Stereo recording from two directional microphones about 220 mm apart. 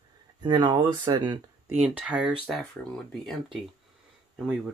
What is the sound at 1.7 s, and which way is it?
Speech, 5° right (ahead or behind).